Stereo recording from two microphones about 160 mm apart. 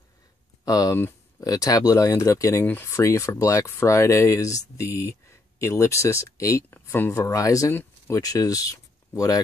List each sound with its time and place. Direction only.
0.7 s speech: 20° left (ahead or behind)